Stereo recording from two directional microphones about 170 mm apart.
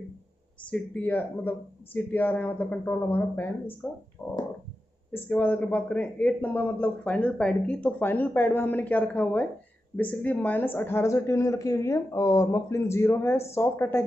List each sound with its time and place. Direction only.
0.7 s a man's voice: 10° left (ahead or behind)